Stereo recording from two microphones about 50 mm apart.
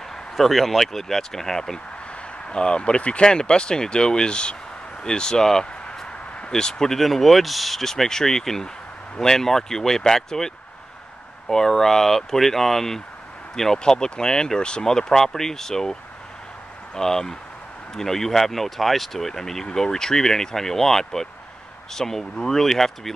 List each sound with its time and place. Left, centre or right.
0.4 s speech: centre
2.5 s speech: centre